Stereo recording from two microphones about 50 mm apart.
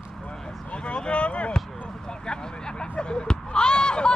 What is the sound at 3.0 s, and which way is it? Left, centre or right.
Basketball bounce, centre.